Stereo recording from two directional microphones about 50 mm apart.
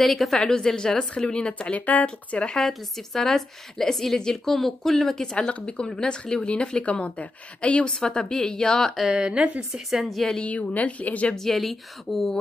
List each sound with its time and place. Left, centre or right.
0.0 s a woman's voice: centre; by 2.0 s left
2.0 s a woman's voice: centre
2.6 s a woman's voice: centre
5.2 s a woman's voice: centre
7.9 s a woman's voice: centre
9.1 s a woman's voice: centre
10.0 s speech: centre
10.4 s a woman's voice: left
11.3 s speech: centre